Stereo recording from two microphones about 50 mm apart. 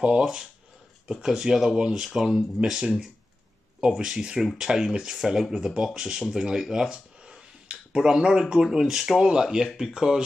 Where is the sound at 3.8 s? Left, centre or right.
Centre.